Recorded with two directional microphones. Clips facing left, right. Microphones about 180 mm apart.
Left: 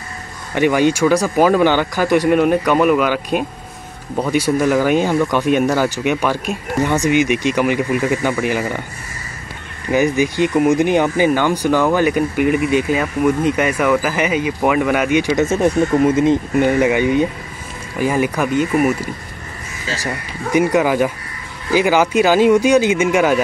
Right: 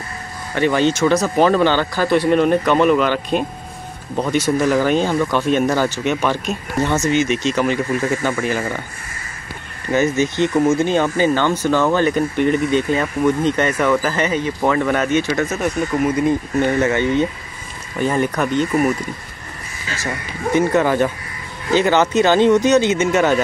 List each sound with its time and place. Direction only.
0.6 s speech: 10° left (ahead or behind)
9.8 s speech: 15° left (ahead or behind)
15.4 s speech: 30° left (ahead or behind); by 19.0 s 5° left (ahead or behind)
20.5 s speech: 10° left (ahead or behind)